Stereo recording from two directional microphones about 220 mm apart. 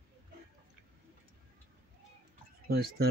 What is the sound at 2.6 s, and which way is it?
Speech, 45° right (ahead or behind).